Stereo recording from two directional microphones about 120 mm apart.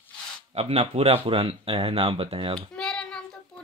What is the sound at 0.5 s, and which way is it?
Speech, 60° right (ahead or behind).